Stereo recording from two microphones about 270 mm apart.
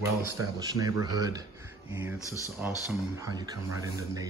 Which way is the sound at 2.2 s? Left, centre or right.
Centre.